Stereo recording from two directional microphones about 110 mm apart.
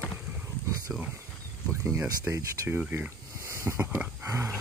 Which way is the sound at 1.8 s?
20° right (ahead or behind).